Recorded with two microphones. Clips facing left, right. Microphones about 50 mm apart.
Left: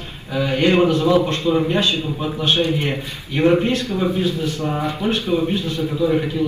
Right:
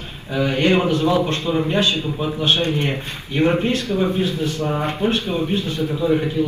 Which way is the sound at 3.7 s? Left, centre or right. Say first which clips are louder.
Even; right.